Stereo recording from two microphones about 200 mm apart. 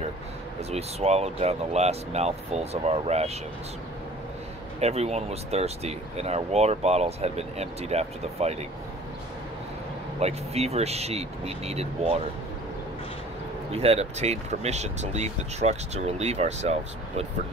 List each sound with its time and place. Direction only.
0.7 s speech: 30° right (ahead or behind)
4.7 s speech: 30° right (ahead or behind)
10.2 s speech: 30° right (ahead or behind)
13.7 s speech: 30° right (ahead or behind)